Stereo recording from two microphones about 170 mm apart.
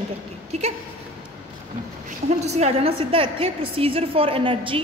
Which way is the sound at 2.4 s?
40° right (ahead or behind).